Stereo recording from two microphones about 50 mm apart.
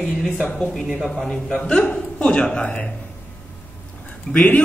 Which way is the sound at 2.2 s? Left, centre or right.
Left.